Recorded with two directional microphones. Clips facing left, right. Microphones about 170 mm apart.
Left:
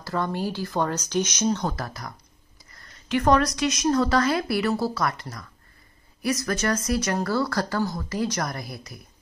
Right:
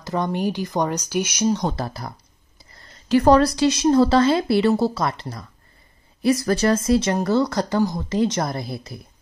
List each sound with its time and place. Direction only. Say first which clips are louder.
0.0 s speech: right 4 dB; 20° right (ahead or behind)
1.7 s a woman's voice: right 5 dB; 30° right (ahead or behind)